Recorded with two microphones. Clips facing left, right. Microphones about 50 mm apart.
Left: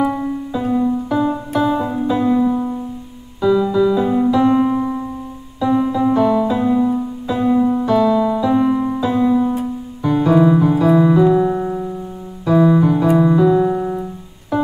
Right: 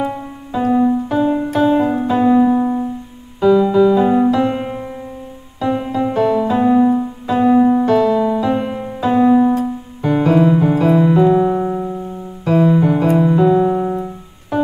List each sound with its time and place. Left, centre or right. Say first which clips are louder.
0.7 s music: right 3 dB; right
6.1 s music: right 3 dB; right
8.2 s music: left 1 dB; right
9.0 s music: right 6 dB; right
10.6 s piano: even; right
11.1 s keyboard: right 1 dB; right
11.6 s music: right 2 dB; centre
12.4 s music: left 1 dB; right
12.7 s keyboard: even; right